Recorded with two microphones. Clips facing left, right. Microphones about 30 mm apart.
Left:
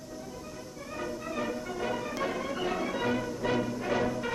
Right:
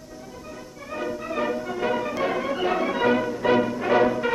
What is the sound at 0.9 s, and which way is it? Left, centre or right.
Music, right.